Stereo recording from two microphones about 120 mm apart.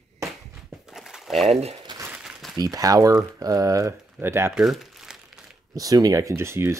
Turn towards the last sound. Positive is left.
turn(degrees=-20)  # may be behind; listen again after turning